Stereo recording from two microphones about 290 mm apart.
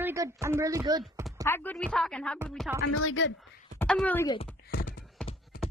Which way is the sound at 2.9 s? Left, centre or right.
Left.